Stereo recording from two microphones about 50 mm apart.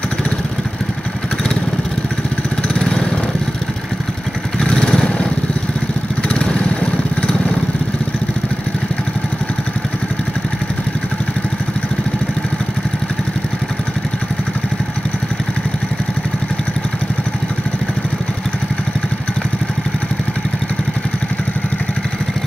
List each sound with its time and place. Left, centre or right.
2.7 s lawn mower: centre
4.6 s motorcycle: centre
6.5 s vehicle: left